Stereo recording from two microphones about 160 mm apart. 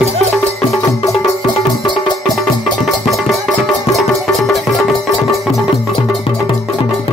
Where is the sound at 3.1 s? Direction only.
Centre (ahead or behind).